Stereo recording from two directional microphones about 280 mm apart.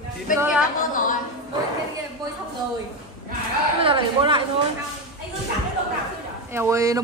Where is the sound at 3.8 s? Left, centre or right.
Centre.